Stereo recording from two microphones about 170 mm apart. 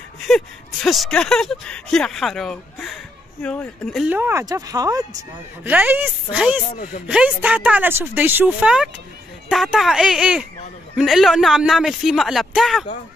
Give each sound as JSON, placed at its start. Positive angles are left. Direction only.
{"t": 0.8, "sound": "speech", "side_deg": 0}
{"t": 4.1, "sound": "speech", "side_deg": -15}
{"t": 5.6, "sound": "speech", "side_deg": -10}